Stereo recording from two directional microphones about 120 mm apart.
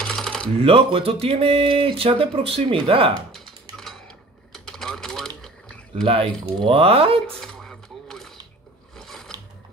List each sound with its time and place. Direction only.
0.0 s a sound: 5° left (ahead or behind)
0.6 s speech: 50° right (ahead or behind)
3.3 s typing: 5° left (ahead or behind)
4.5 s typewriter: 5° left (ahead or behind)
6.0 s speech: 50° right (ahead or behind)
7.3 s a sound: 5° left (ahead or behind)